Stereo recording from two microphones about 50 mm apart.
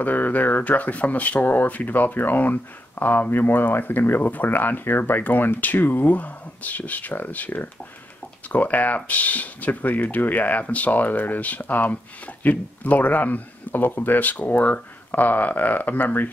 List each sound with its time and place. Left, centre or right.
0.0 s speech: left